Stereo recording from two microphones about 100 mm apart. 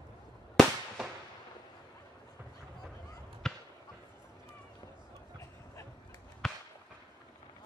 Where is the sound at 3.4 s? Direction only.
5° left (ahead or behind).